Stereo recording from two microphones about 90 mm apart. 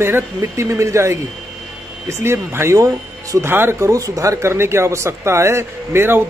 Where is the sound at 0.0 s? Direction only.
30° right (ahead or behind).